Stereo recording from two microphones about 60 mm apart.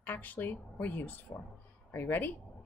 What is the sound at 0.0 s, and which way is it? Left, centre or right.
A woman's voice, left.